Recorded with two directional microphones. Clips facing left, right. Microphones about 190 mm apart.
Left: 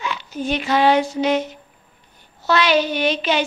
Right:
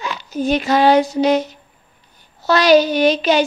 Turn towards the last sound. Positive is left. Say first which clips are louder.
# right 6 dB
turn(degrees=-40)  # may be behind; listen again after turning